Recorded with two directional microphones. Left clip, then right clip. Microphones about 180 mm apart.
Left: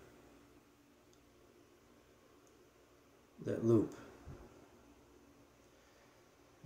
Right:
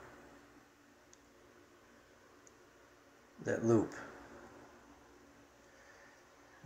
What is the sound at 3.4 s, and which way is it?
Speech, 25° left (ahead or behind).